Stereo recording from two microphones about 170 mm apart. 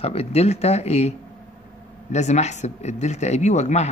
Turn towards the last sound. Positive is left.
turn(degrees=40)  # may be behind; listen again after turning